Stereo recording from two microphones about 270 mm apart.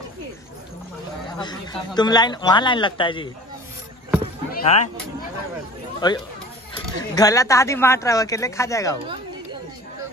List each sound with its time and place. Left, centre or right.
1.4 s speech: centre
4.5 s a sound: left
5.9 s speech: centre